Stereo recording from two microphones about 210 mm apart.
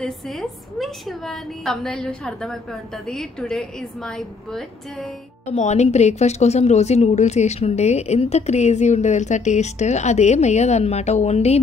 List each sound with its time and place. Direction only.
0.0 s a woman's voice: centre (ahead or behind)
5.5 s a woman's voice: 30° left (ahead or behind)